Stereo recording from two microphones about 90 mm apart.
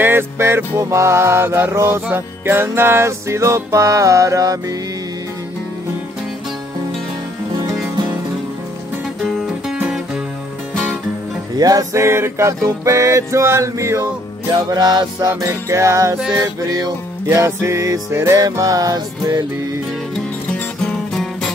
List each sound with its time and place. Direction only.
0.0 s music: 25° right (ahead or behind)
11.5 s music: 45° right (ahead or behind)
14.5 s music: 50° right (ahead or behind)
15.2 s music: 35° right (ahead or behind)
16.6 s music: 45° right (ahead or behind)
17.3 s music: 30° right (ahead or behind)
21.2 s music: 5° left (ahead or behind)